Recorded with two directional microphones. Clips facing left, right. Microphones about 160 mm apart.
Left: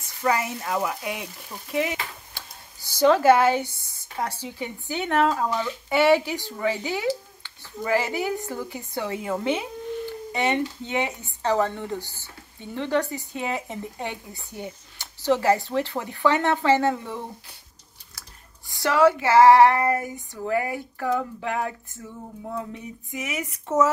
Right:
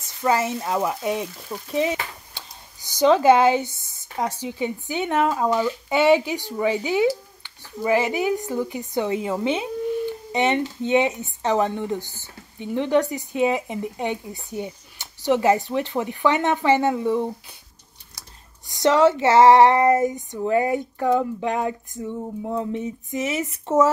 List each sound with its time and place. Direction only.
0.3 s female singing: 25° right (ahead or behind)
1.8 s a sound: 20° right (ahead or behind)
4.2 s speech: 15° right (ahead or behind)
18.7 s female singing: 20° right (ahead or behind)